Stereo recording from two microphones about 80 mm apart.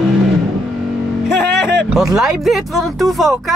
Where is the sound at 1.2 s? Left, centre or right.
Centre.